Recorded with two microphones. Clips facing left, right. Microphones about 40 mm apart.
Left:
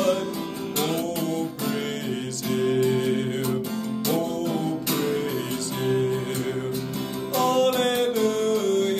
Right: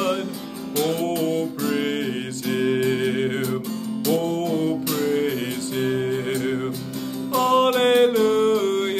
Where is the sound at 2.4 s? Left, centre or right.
Right.